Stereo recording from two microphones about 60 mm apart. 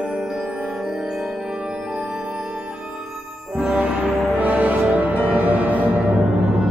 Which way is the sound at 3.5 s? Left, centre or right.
Right.